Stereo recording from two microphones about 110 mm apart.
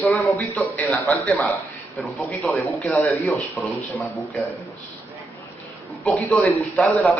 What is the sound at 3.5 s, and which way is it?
Speech, centre (ahead or behind).